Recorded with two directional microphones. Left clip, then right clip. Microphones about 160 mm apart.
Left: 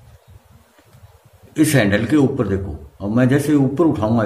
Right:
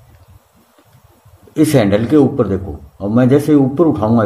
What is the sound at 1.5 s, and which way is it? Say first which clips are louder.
A man's voice: right 4 dB; 35° right (ahead or behind).